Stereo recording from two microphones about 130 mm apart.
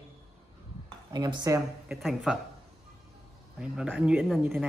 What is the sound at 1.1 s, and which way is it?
Speech, 30° right (ahead or behind).